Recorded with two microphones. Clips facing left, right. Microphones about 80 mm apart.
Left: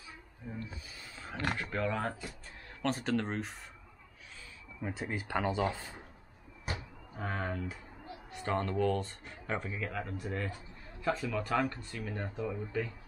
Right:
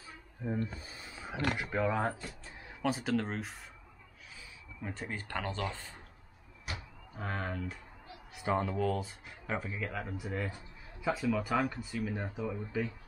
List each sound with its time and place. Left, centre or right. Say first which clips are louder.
0.5 s speech: right 7 dB; right
0.9 s speech: left 1 dB; centre
4.8 s speech: left 3 dB; centre
7.2 s speech: left 1 dB; centre